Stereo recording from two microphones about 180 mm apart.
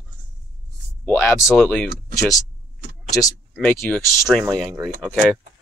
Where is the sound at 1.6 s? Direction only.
5° left (ahead or behind).